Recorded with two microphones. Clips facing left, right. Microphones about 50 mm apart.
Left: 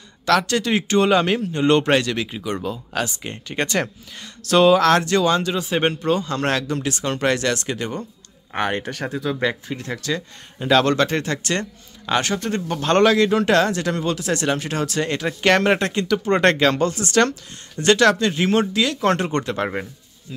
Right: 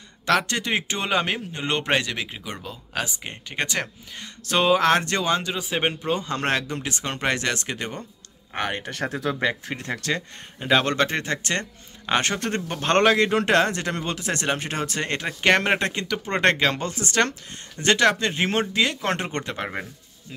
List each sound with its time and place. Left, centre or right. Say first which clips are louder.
0.2 s speech: left 4 dB; right; by 3.9 s centre
4.2 s speech: left 7 dB; centre
5.4 s speech: left 5 dB; centre
8.5 s speech: left 5 dB; centre
8.9 s speech: left 1 dB; right
10.6 s speech: left 4 dB; centre
12.1 s speech: left 2 dB; right
15.2 s speech: left 3 dB; centre
19.6 s speech: left 5 dB; centre